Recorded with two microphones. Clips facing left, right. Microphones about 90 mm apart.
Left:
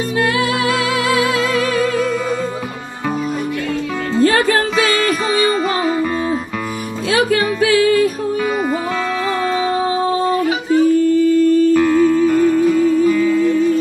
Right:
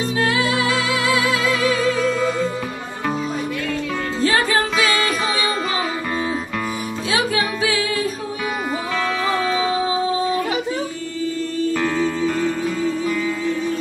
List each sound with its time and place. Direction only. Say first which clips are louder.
1.1 s music: left 4 dB; 45° left (ahead or behind)
4.2 s music: left 6 dB; 50° left (ahead or behind)
7.1 s music: left 6 dB; 50° left (ahead or behind)
10.7 s a sound: left 14 dB; 50° left (ahead or behind)
11.7 s music: left 8 dB; 10° left (ahead or behind)